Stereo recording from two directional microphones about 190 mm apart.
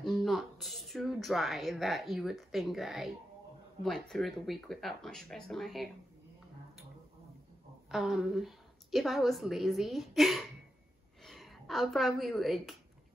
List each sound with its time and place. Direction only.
0.0 s speech: centre (ahead or behind)
7.9 s a woman's voice: centre (ahead or behind)